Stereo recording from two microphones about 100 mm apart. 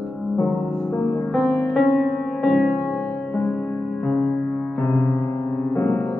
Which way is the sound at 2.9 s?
20° left (ahead or behind).